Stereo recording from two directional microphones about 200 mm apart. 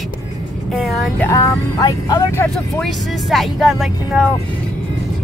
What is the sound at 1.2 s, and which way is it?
Speech, 15° left (ahead or behind).